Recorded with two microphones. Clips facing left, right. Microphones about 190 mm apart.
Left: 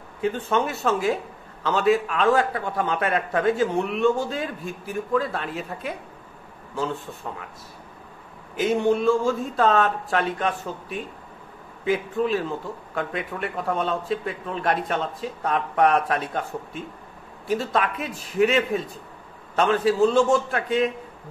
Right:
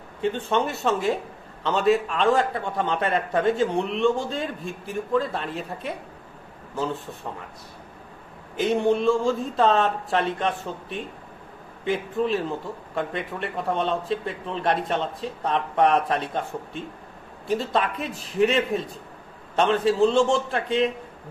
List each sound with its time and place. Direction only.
0.2 s a man's voice: centre (ahead or behind)
8.5 s a man's voice: centre (ahead or behind)